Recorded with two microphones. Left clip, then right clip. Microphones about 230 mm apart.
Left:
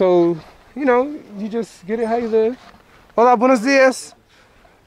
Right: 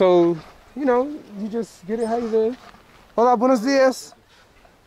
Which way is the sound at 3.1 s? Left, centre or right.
Centre.